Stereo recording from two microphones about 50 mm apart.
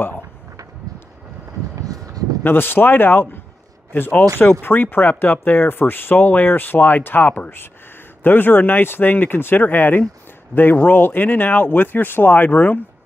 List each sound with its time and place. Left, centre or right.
2.4 s speech: left